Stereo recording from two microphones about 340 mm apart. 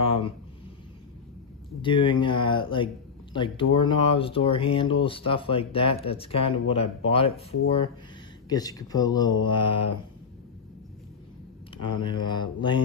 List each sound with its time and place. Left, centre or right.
0.0 s a sound: centre
1.8 s speech: centre
11.9 s speech: centre